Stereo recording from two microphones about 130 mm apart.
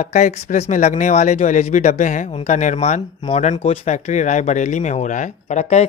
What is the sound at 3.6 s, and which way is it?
Speech, 55° left (ahead or behind).